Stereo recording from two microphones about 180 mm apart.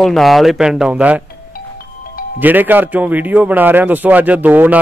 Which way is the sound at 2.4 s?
10° right (ahead or behind).